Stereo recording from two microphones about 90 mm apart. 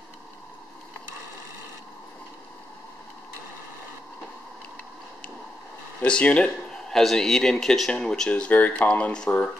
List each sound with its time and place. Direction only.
6.0 s speech: 10° left (ahead or behind)